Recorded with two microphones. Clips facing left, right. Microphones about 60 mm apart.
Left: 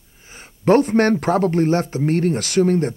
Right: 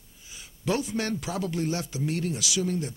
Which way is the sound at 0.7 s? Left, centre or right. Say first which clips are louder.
Left 13 dB; left.